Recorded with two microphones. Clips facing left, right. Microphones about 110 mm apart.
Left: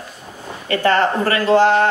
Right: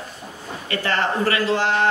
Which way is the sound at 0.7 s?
45° left (ahead or behind).